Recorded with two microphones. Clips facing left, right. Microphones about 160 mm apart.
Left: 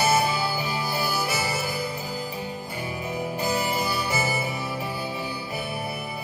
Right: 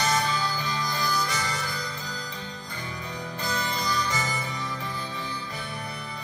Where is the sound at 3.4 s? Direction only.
10° left (ahead or behind).